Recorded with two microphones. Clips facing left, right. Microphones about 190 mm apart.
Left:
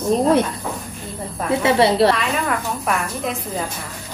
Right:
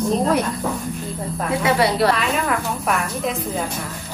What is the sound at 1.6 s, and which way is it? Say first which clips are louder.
Speech: left 3 dB; 25° left (ahead or behind).